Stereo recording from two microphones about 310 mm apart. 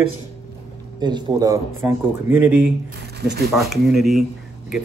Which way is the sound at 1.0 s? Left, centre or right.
Centre.